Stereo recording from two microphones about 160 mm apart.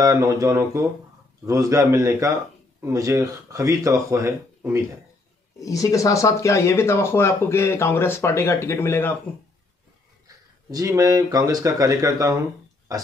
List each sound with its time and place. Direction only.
0.0 s speech: 20° right (ahead or behind)
5.6 s speech: 20° left (ahead or behind)
10.2 s speech: 20° right (ahead or behind)